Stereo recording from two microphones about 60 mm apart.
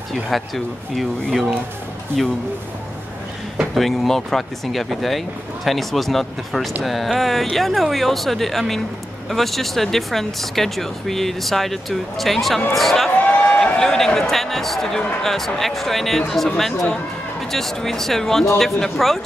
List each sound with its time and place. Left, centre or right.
0.3 s speech: centre
3.7 s speech: centre
13.2 s a sound: left
13.7 s speech: centre